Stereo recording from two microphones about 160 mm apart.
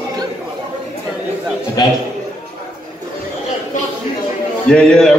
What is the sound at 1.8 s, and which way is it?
Speech, 25° left (ahead or behind).